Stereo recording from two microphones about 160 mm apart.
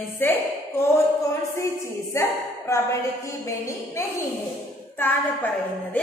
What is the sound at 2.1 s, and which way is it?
Speech, 20° left (ahead or behind).